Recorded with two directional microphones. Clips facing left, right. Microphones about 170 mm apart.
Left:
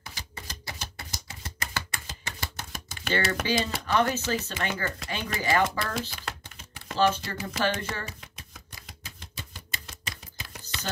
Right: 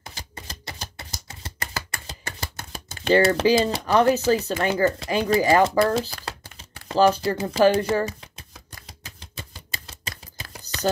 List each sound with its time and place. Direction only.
0.5 s typewriter: 25° right (ahead or behind)
2.4 s speech: 30° right (ahead or behind)
6.9 s shuffling cards: 35° right (ahead or behind)
10.0 s typing: 35° right (ahead or behind)